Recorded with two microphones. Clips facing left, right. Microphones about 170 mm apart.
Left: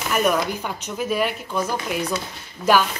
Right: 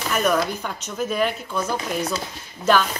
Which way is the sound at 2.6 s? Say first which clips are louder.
Left 1 dB; 20° right (ahead or behind).